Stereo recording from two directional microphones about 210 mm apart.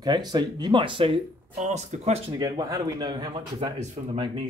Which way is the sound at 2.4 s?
15° right (ahead or behind).